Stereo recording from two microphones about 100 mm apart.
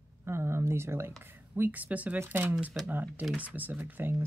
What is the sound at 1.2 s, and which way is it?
Speech, 20° right (ahead or behind).